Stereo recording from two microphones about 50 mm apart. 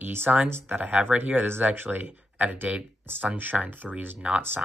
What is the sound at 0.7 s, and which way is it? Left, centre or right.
Speech, right.